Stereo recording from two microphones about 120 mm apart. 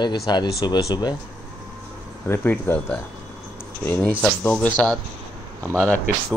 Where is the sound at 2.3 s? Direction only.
15° left (ahead or behind).